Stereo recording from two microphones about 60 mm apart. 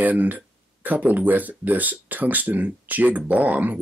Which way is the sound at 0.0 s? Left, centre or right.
Right.